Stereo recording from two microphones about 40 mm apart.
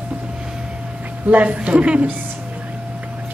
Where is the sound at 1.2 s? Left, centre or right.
Right.